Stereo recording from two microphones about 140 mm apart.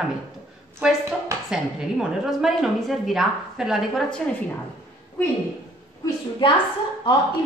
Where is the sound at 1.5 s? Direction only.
Centre (ahead or behind).